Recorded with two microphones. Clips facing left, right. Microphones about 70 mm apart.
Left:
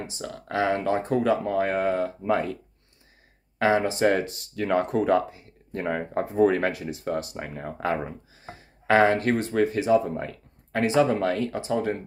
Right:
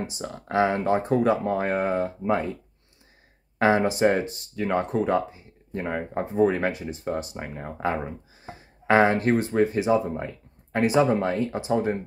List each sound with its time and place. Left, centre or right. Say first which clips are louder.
0.2 s speech: right 3 dB; right
3.5 s speech: right 1 dB; right
3.8 s speech: right 1 dB; centre
4.2 s speech: even; centre
8.8 s speech: even; centre
9.8 s speech: left 4 dB; right
10.0 s speech: even; centre
10.7 s speech: right 1 dB; centre